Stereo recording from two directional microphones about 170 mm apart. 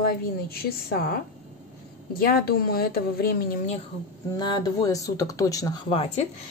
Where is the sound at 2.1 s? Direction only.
65° left (ahead or behind).